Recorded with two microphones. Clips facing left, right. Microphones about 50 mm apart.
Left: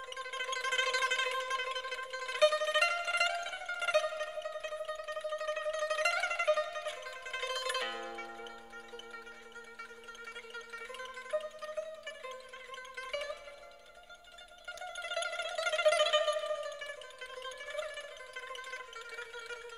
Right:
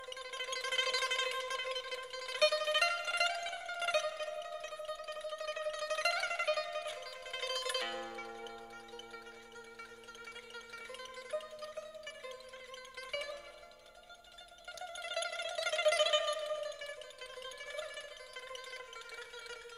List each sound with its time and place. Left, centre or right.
0.3 s a sound: centre
1.1 s music: centre
4.6 s music: centre
5.0 s music: centre
10.5 s music: centre
14.7 s music: centre